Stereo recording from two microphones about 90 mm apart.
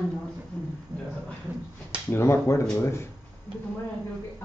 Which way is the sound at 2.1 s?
30° left (ahead or behind).